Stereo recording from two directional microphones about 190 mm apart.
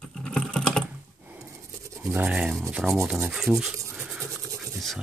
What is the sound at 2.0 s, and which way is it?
Speech, 5° right (ahead or behind).